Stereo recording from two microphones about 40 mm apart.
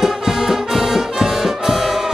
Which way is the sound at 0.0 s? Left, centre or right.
Centre.